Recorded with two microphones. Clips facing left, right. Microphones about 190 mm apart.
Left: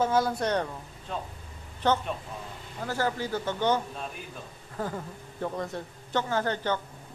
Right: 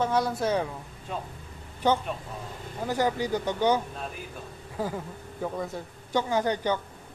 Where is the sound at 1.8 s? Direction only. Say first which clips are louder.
Right 1 dB; 10° right (ahead or behind).